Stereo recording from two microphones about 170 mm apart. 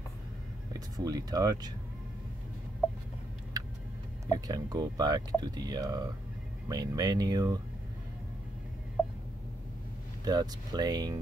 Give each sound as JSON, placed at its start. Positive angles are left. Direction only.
{"t": 0.7, "sound": "speech", "side_deg": -20}
{"t": 4.3, "sound": "speech", "side_deg": -20}
{"t": 10.2, "sound": "speech", "side_deg": -20}